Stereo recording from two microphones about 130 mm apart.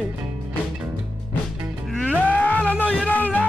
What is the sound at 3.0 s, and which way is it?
Music, 15° left (ahead or behind).